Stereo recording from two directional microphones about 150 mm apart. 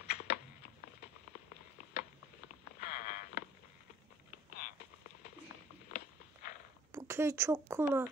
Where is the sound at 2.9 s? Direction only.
75° left (ahead or behind).